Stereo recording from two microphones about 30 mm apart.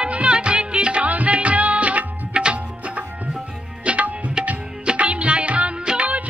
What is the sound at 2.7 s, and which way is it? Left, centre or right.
Tabla, right.